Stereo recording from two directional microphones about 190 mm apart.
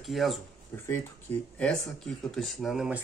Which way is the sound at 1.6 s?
5° left (ahead or behind).